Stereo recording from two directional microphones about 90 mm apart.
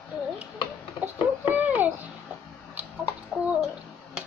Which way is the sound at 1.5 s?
20° right (ahead or behind).